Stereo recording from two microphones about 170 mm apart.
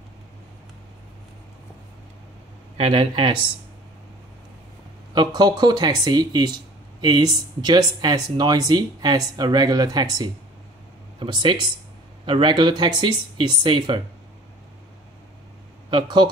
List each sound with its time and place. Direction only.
2.8 s speech: 30° right (ahead or behind)
5.1 s speech: 25° right (ahead or behind)
15.9 s speech: 25° right (ahead or behind)